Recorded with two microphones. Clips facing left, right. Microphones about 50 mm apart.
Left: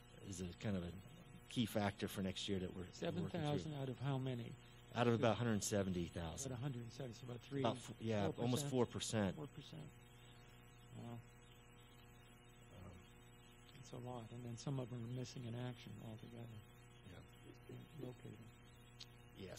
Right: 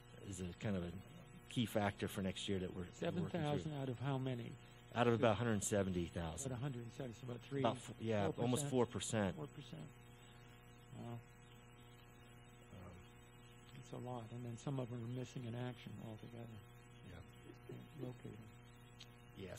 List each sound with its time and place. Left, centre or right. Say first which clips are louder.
0.3 s speech: right 2 dB; centre
14.0 s speech: right 2 dB; centre